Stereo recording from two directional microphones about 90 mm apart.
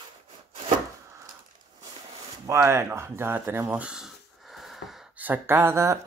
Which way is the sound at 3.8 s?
10° right (ahead or behind).